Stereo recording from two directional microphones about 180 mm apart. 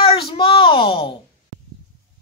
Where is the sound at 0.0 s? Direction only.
30° left (ahead or behind).